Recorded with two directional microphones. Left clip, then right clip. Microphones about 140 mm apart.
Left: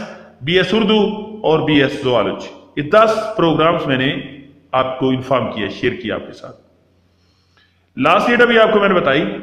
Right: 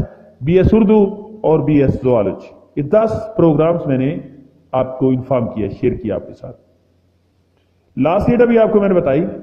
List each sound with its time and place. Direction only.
0.4 s a man's voice: 35° right (ahead or behind)
5.7 s speech: 30° right (ahead or behind)
7.9 s a man's voice: 25° right (ahead or behind)